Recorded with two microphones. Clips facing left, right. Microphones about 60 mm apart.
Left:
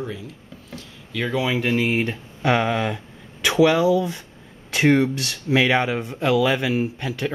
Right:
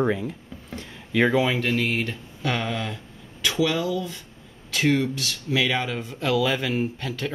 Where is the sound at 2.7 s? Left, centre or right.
Left.